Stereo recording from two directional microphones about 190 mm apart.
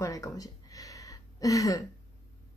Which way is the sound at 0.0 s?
15° left (ahead or behind).